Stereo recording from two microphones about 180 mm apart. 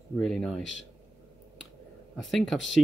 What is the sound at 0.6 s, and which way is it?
Speech, 90° left.